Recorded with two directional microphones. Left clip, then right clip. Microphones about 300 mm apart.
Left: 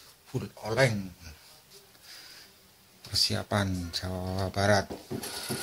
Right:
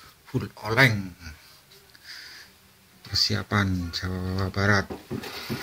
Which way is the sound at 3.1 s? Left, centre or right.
Centre.